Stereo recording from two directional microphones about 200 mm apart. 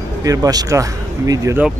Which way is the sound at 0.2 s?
20° right (ahead or behind).